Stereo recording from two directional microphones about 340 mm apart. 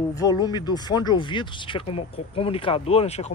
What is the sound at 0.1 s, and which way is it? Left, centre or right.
Speech, centre.